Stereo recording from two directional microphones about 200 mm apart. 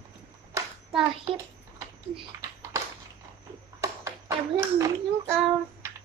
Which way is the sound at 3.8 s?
15° right (ahead or behind).